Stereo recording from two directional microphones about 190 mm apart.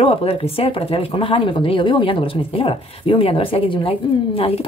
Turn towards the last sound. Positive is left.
turn(degrees=30)  # may be behind; listen again after turning